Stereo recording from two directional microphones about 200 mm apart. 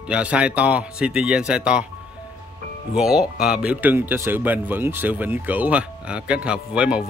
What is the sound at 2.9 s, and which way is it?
Speech, 5° right (ahead or behind).